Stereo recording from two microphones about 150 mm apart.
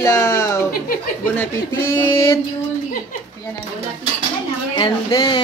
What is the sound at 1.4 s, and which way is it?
Speech, 15° left (ahead or behind).